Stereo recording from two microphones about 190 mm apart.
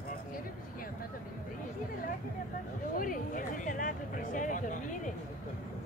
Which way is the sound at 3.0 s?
45° left (ahead or behind).